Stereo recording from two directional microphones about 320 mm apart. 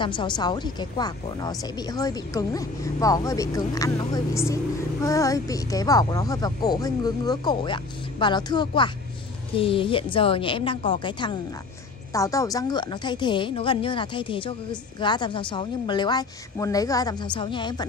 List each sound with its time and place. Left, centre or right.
0.0 s speech: centre